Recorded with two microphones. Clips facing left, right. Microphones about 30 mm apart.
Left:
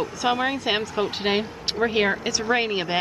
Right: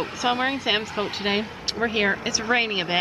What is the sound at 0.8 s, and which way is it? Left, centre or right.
Speech, right.